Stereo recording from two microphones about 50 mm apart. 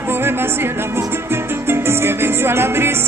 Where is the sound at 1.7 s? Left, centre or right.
Right.